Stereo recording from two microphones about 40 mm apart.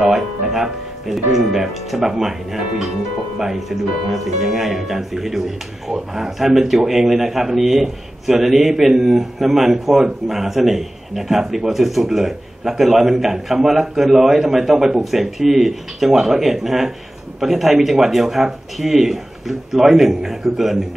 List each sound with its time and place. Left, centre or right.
0.0 s a man's voice: centre